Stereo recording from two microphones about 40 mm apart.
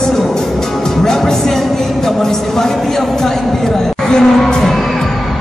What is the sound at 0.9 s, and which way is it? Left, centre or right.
Music, centre.